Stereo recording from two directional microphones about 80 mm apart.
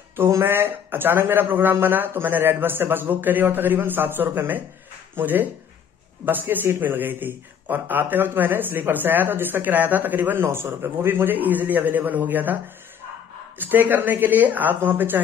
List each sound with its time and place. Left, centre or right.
0.1 s speech: right
13.6 s speech: right